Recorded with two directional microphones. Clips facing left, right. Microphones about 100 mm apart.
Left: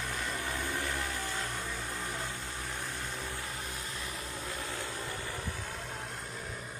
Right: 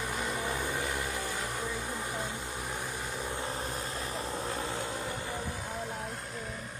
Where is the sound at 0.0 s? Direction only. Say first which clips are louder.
Right 3 dB; 15° right (ahead or behind).